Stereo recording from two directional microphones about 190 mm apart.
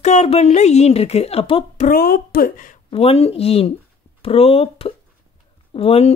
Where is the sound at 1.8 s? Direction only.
50° left (ahead or behind).